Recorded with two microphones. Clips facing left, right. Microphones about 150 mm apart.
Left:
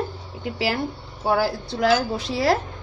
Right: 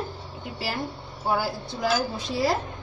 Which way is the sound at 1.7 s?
85° left.